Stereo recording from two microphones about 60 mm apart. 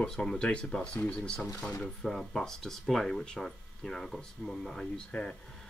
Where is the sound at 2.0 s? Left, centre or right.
Centre.